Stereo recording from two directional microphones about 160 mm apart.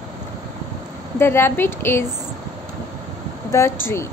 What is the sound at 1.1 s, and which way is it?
Speech, 15° left (ahead or behind).